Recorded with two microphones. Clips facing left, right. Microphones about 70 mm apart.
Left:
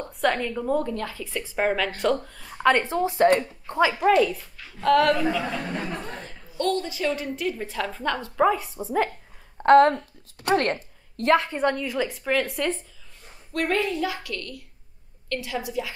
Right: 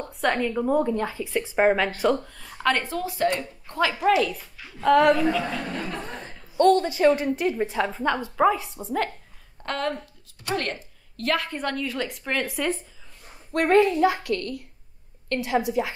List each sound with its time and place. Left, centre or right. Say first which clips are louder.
0.0 s a woman's voice: even; centre
0.5 s speech: right 3 dB; centre
1.6 s speech: right 4 dB; right
2.1 s a woman's voice: even; centre
2.9 s a woman's voice: left 5 dB; left
3.9 s a woman's voice: even; centre
6.2 s a woman's voice: right 9 dB; right
7.7 s a woman's voice: right 3 dB; centre
9.7 s a woman's voice: left 13 dB; left
11.1 s a woman's voice: left 6 dB; left; by 12.7 s centre
13.5 s a woman's voice: right 6 dB; right